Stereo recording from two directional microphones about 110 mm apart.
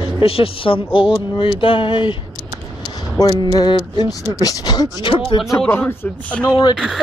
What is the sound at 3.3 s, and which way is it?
Speech, 45° left (ahead or behind).